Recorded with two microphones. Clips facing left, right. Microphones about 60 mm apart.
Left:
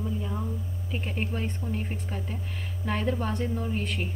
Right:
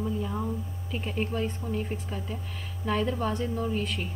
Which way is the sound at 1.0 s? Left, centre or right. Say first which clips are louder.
Right 3 dB; left.